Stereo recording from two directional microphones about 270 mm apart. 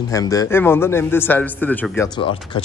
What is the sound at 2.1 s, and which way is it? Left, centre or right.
Speech, centre.